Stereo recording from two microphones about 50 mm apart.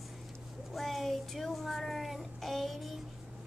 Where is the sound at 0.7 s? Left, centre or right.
Centre.